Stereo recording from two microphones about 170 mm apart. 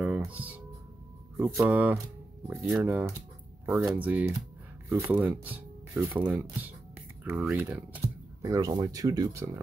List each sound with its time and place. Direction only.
0.0 s music: 10° right (ahead or behind)
1.3 s speech: 15° right (ahead or behind)